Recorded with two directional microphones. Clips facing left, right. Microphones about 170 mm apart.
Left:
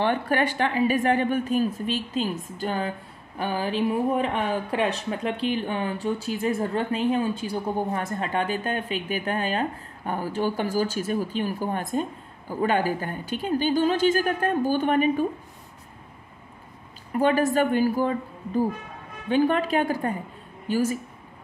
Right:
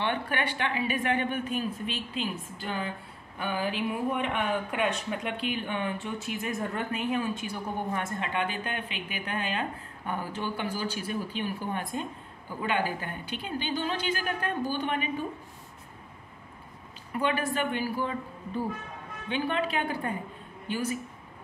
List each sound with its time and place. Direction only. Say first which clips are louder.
0.0 s speech: left 7 dB; 40° left (ahead or behind)
17.2 s speech: left 8 dB; 40° left (ahead or behind)